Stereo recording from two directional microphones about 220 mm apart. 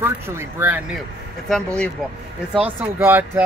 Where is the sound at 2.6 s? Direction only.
10° right (ahead or behind).